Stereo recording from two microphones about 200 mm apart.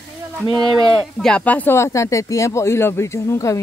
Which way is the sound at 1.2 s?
5° left (ahead or behind).